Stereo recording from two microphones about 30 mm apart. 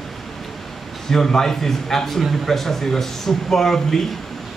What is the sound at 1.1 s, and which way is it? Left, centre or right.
A man's voice, centre.